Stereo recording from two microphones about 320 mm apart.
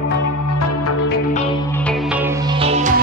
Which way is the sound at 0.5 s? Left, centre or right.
Left.